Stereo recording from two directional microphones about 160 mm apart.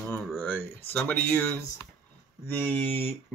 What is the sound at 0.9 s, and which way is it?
Speech, 10° left (ahead or behind).